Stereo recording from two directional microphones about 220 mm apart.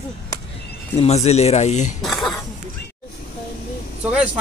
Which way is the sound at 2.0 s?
Centre (ahead or behind).